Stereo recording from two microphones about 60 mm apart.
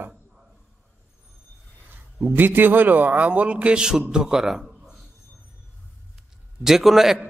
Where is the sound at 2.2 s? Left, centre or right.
Right; by 5.0 s centre.